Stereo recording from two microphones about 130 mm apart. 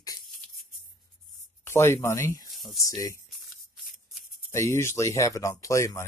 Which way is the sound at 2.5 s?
Centre (ahead or behind).